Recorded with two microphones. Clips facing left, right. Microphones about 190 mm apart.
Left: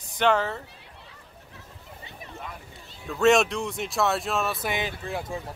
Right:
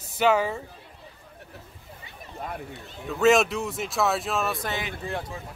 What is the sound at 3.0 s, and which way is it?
A man's voice, centre (ahead or behind).